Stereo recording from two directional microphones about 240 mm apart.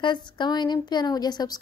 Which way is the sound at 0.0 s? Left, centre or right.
Centre.